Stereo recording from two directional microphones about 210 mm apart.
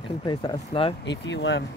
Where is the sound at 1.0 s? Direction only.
60° left (ahead or behind).